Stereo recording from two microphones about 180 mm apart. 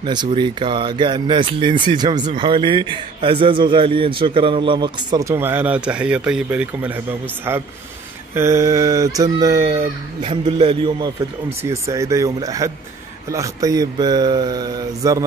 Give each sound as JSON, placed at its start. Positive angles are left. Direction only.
{"t": 0.0, "sound": "speech", "side_deg": -25}
{"t": 8.4, "sound": "speech", "side_deg": -15}
{"t": 11.6, "sound": "speech", "side_deg": -15}